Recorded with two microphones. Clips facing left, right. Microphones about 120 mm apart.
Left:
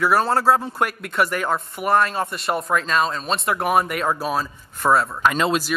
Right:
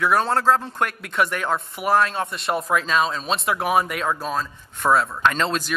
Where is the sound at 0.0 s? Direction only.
5° left (ahead or behind).